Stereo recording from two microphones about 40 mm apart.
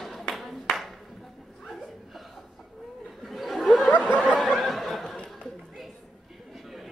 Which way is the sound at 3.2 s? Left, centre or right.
Centre.